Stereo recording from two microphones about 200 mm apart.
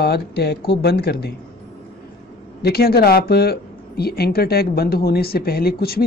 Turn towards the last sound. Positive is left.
turn(degrees=50)  # may be behind; listen again after turning